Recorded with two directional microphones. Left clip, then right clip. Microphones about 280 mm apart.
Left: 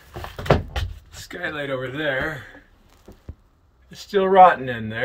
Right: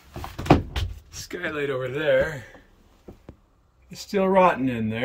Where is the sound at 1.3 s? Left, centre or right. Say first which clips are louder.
Even; centre.